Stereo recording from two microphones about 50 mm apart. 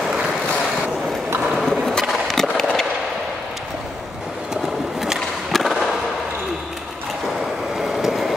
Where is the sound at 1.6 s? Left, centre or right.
Centre.